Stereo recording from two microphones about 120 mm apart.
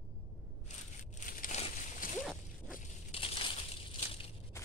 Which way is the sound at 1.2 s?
80° left.